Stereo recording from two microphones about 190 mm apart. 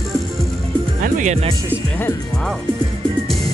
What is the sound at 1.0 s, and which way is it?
Music, 40° right (ahead or behind).